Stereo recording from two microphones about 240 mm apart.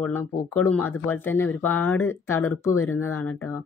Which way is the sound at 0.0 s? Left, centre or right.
Centre.